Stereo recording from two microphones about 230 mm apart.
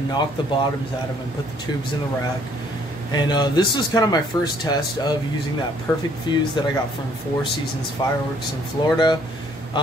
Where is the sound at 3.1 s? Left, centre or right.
Centre.